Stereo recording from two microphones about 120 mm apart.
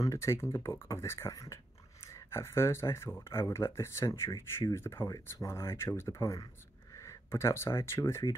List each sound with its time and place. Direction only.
0.0 s speech: 25° left (ahead or behind)